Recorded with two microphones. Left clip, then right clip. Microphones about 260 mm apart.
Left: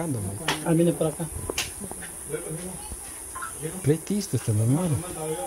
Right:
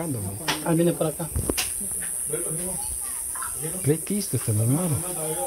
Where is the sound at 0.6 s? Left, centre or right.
Centre.